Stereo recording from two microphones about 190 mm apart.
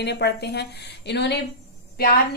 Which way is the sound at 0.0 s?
60° left (ahead or behind).